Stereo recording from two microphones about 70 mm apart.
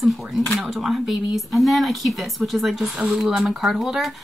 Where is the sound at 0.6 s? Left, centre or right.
Centre.